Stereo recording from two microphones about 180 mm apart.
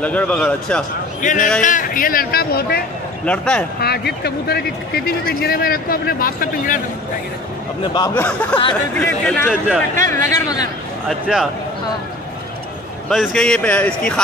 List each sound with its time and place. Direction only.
0.0 s a man's voice: 5° left (ahead or behind)
1.2 s a man's voice: 45° left (ahead or behind)
3.3 s speech: 5° left (ahead or behind)
3.8 s speech: 60° left (ahead or behind)
8.1 s a man's voice: 10° left (ahead or behind)
11.1 s speech: centre (ahead or behind)
13.1 s speech: 5° left (ahead or behind)